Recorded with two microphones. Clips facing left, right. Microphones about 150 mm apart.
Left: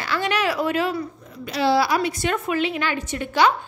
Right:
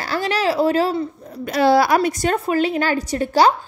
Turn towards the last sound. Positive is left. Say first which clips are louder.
# right 4 dB
turn(degrees=-35)  # may be behind; listen again after turning